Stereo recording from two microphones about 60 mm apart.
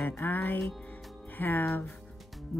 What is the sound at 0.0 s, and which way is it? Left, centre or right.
Speech, left.